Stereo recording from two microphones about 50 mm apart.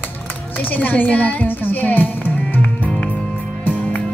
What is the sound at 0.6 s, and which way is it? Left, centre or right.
Speech, left.